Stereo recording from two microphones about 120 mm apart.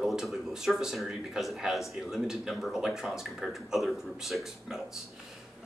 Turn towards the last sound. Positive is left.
turn(degrees=0)  # may be behind; listen again after turning